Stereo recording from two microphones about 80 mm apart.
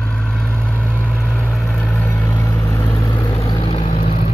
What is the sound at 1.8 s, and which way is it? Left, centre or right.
Vehicle, centre.